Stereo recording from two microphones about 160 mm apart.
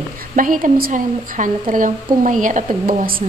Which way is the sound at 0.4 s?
55° right (ahead or behind).